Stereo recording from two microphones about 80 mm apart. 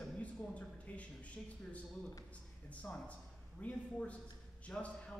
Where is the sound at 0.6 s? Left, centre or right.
Centre.